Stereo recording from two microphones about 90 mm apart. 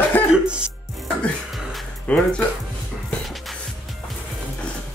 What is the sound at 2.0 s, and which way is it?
Speech, 15° left (ahead or behind).